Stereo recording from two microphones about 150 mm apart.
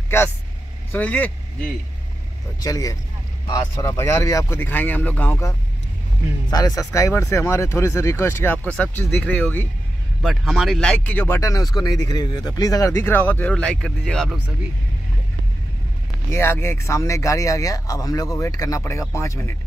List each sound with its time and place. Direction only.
0.9 s speech: 10° left (ahead or behind)
2.6 s speech: 25° left (ahead or behind)
10.2 s speech: centre (ahead or behind)
16.3 s speech: 15° left (ahead or behind)